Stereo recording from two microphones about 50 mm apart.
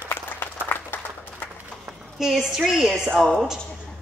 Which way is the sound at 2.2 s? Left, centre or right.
Centre.